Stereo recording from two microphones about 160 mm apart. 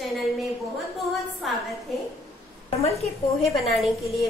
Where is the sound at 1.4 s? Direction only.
Centre (ahead or behind).